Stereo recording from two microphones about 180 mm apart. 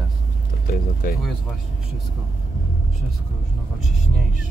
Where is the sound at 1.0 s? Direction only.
50° left (ahead or behind).